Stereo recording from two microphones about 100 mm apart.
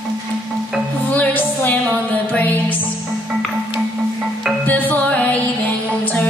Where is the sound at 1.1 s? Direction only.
15° left (ahead or behind).